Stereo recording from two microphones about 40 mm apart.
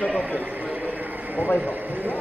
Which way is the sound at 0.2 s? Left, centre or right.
Right.